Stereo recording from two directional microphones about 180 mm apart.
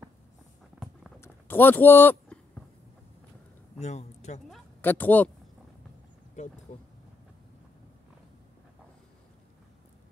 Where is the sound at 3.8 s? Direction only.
40° left (ahead or behind).